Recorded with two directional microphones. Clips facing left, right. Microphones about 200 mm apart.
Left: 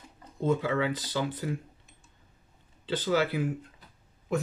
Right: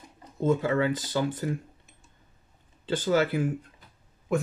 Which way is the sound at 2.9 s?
50° right (ahead or behind).